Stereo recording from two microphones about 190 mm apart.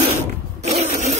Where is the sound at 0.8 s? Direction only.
35° right (ahead or behind).